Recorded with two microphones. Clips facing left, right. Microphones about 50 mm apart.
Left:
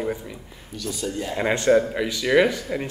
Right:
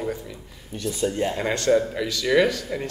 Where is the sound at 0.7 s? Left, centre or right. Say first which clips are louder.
Right 4 dB; right.